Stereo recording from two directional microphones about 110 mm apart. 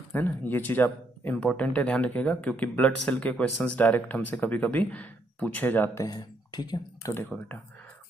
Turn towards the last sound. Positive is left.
turn(degrees=20)  # may be behind; listen again after turning